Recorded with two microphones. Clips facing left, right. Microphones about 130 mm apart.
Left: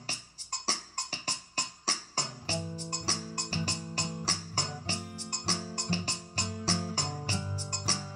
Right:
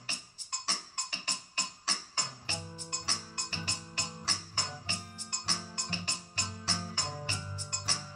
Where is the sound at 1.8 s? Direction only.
40° left (ahead or behind).